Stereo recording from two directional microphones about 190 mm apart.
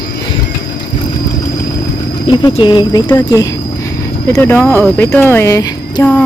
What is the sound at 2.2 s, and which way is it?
Speech, 25° left (ahead or behind).